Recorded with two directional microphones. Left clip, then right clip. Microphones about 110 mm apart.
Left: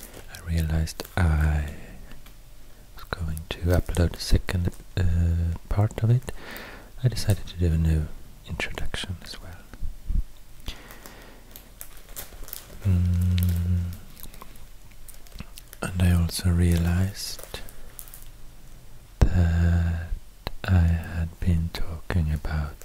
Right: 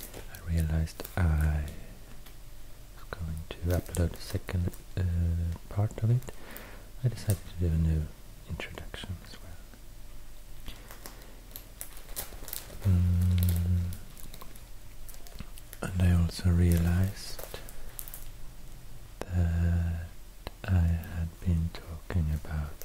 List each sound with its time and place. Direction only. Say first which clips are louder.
0.1 s speech: left 6 dB; 10° left (ahead or behind)
3.0 s whispering: left 8 dB; 20° left (ahead or behind)
3.6 s speech: left 7 dB; 10° left (ahead or behind)
10.6 s a sound: left 9 dB; 15° left (ahead or behind)
12.1 s a sound: even; centre (ahead or behind)
12.9 s speech: left 4 dB; 10° left (ahead or behind)
15.4 s whispering: left 8 dB; 15° left (ahead or behind)
15.8 s speech: left 5 dB; 10° left (ahead or behind)
19.1 s speech: left 8 dB; 15° left (ahead or behind)